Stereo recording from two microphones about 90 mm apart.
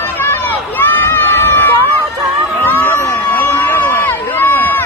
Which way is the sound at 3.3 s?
25° left (ahead or behind).